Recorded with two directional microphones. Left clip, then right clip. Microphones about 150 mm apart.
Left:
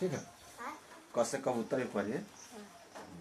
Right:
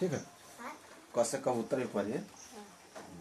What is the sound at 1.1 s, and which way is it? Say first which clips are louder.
Speech: right 2 dB; 15° right (ahead or behind).